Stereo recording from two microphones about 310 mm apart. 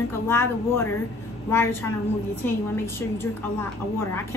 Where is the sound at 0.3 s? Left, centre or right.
Centre.